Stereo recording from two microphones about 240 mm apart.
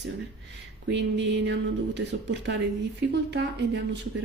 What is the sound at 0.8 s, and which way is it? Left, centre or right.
A woman's voice, right.